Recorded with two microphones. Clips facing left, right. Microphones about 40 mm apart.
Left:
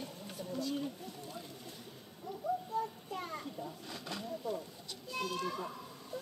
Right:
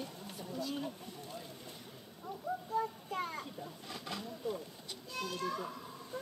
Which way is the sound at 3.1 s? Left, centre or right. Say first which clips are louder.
Right 2 dB; centre.